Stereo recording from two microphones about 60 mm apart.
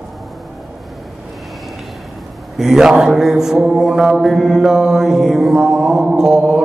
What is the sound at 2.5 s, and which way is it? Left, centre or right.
Mantra, centre.